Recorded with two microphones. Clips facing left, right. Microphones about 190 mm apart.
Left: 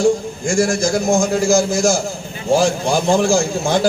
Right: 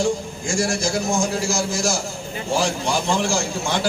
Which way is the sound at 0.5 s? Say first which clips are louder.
Left 6 dB; 50° left (ahead or behind).